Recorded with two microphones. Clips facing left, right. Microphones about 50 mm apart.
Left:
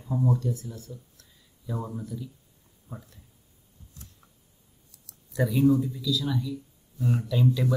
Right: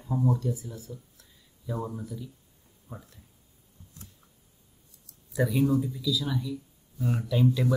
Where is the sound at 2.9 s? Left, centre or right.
Centre.